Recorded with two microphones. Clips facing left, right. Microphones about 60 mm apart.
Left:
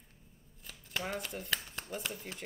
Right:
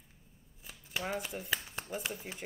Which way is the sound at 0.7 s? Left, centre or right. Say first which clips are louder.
Right 1 dB; centre.